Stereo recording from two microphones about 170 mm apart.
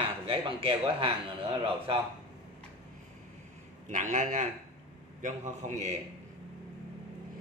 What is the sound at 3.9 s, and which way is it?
A man's voice, 45° right (ahead or behind).